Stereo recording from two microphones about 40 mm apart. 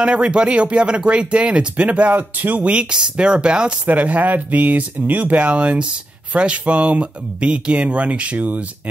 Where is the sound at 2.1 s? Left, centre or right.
Right.